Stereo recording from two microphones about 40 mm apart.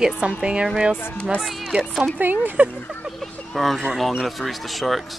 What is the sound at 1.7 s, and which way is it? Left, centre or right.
Speech, right.